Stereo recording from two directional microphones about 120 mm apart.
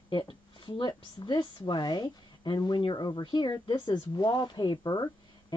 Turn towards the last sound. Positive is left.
turn(degrees=35)  # may be behind; listen again after turning